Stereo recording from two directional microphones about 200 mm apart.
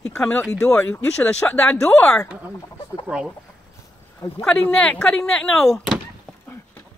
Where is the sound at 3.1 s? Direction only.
5° right (ahead or behind).